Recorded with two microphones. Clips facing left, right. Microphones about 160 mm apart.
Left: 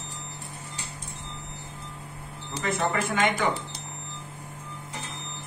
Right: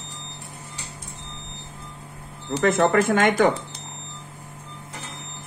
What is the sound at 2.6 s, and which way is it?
Speech, 45° right (ahead or behind).